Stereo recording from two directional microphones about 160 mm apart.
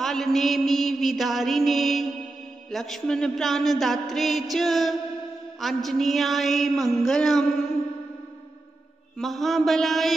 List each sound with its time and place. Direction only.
0.0 s a man's voice: centre (ahead or behind)
9.2 s a man's voice: centre (ahead or behind)